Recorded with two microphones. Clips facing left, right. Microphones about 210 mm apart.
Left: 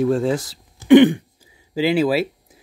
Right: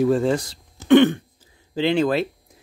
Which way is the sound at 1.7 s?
5° left (ahead or behind).